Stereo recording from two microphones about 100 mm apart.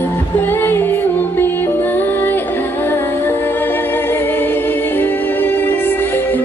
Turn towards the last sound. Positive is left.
turn(degrees=20)  # may be behind; listen again after turning